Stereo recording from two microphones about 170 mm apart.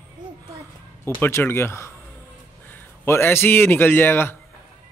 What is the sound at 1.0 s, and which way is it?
A man's voice, 15° left (ahead or behind).